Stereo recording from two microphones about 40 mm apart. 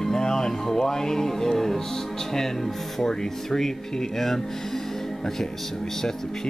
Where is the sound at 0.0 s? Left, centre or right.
Centre.